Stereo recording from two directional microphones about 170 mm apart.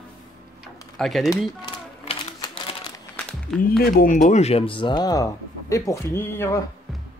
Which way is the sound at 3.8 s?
55° left (ahead or behind).